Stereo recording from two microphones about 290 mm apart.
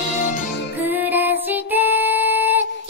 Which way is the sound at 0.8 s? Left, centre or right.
Centre.